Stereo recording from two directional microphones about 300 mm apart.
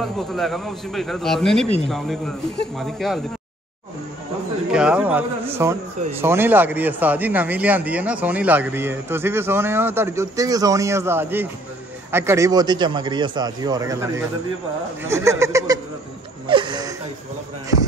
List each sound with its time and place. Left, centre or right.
0.0 s a man's voice: centre
4.6 s a man's voice: centre
16.4 s a sound: centre